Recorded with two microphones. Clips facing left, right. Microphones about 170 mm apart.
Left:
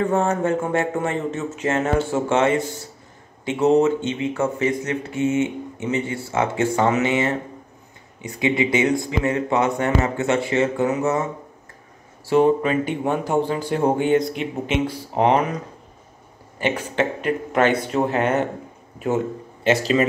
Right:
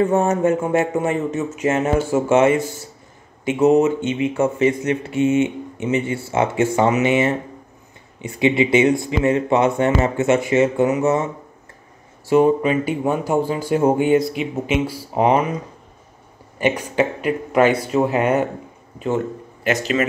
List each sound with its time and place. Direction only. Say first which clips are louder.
0.0 s speech: right 3 dB; 20° right (ahead or behind)
12.3 s speech: right 2 dB; 10° right (ahead or behind)
16.5 s speech: right 3 dB; 15° right (ahead or behind)
18.9 s speech: right 1 dB; 10° left (ahead or behind)
19.6 s speech: left 2 dB; 30° left (ahead or behind)